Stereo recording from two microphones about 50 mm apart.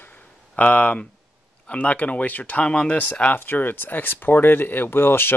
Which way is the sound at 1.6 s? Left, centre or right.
Left.